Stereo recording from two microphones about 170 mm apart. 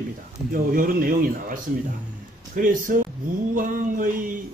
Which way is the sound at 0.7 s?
55° right (ahead or behind).